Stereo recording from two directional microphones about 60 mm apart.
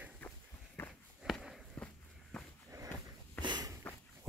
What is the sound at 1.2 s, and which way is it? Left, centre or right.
Walk, centre.